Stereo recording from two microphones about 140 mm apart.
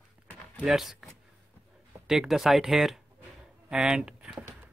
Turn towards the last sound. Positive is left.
turn(degrees=-5)  # may be behind; listen again after turning